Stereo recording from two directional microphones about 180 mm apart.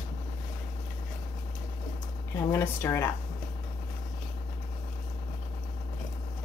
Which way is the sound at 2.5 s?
15° left (ahead or behind).